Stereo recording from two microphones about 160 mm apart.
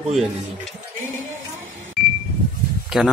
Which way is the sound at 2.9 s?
5° right (ahead or behind).